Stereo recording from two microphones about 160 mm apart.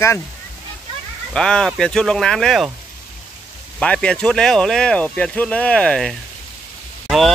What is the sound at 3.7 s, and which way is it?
Speech, 5° left (ahead or behind).